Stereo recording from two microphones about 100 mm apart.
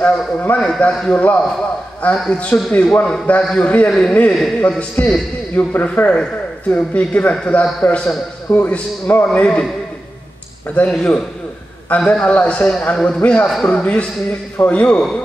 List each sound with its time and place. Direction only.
0.0 s a man's voice: 15° left (ahead or behind)
8.5 s a man's voice: 20° left (ahead or behind)
10.7 s a man's voice: 10° left (ahead or behind)
13.2 s a man's voice: 15° left (ahead or behind)
13.5 s a man's voice: 5° left (ahead or behind)